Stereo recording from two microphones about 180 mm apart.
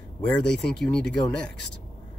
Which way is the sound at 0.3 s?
5° left (ahead or behind).